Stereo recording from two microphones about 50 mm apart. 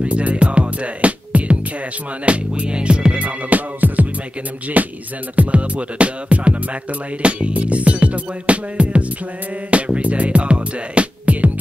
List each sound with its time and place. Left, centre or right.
0.0 s music: right